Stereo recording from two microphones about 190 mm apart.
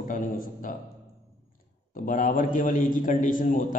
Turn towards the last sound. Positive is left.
turn(degrees=45)  # may be behind; listen again after turning